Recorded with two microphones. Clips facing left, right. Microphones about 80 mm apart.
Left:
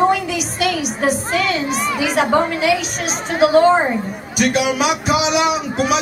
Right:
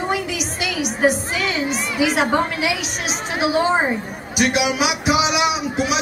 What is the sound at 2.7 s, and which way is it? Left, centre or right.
A woman's voice, centre.